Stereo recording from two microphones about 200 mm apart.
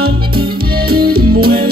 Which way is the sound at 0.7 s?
50° right (ahead or behind).